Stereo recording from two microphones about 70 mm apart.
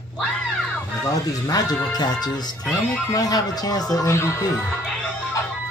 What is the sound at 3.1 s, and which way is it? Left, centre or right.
Speech, left.